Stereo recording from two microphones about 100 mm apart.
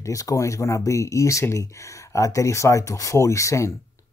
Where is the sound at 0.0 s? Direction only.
35° left (ahead or behind).